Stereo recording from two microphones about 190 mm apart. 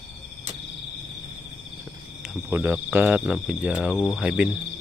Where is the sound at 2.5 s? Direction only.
10° right (ahead or behind).